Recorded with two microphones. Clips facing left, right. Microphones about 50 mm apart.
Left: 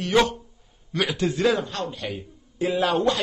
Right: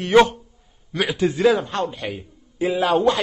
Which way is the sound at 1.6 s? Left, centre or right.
Right.